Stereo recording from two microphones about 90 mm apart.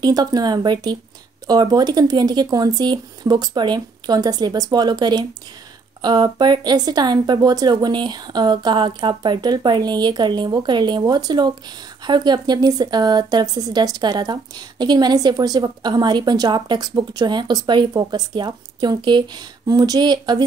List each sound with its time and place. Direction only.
0.0 s a woman's voice: 45° right (ahead or behind)
19.6 s a woman's voice: 45° right (ahead or behind)